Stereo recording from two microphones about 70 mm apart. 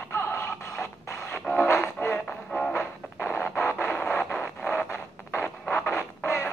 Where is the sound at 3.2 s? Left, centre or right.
Left.